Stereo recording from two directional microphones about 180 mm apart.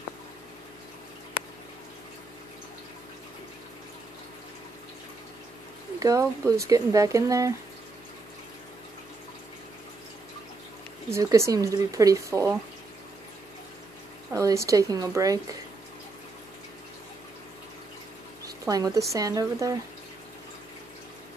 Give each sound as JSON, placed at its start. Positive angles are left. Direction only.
{"t": 5.9, "sound": "speech", "side_deg": -20}
{"t": 11.1, "sound": "speech", "side_deg": -15}
{"t": 14.3, "sound": "speech", "side_deg": -15}
{"t": 18.4, "sound": "a sound", "side_deg": -20}
{"t": 19.1, "sound": "speech", "side_deg": -20}